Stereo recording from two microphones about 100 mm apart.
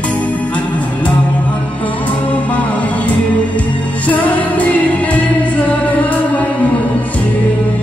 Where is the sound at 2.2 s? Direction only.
15° left (ahead or behind).